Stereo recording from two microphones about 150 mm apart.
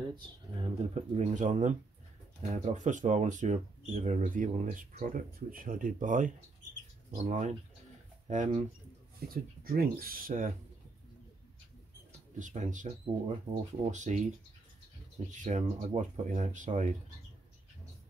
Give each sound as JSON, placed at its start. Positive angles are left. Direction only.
{"t": 0.1, "sound": "speech", "side_deg": -35}
{"t": 9.3, "sound": "speech", "side_deg": -75}
{"t": 12.4, "sound": "speech", "side_deg": -55}